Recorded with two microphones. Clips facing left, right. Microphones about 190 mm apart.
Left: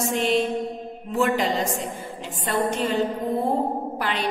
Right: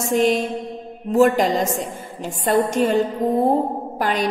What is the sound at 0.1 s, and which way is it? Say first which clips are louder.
A woman's voice: right 6 dB; 45° right (ahead or behind).